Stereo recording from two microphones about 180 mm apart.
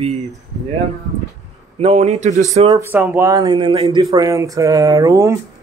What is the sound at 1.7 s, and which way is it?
Speech, 35° right (ahead or behind).